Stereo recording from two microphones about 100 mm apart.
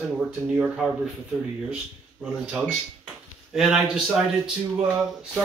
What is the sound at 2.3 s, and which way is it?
Speech, 5° right (ahead or behind).